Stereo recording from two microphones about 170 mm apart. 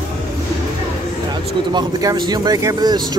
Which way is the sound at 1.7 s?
25° right (ahead or behind).